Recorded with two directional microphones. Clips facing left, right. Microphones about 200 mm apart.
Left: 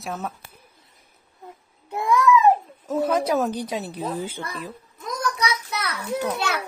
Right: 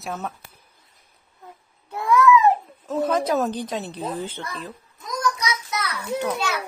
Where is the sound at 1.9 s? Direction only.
15° left (ahead or behind).